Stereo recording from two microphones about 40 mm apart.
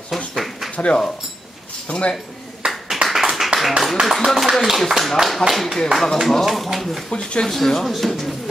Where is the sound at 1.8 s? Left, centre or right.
Left.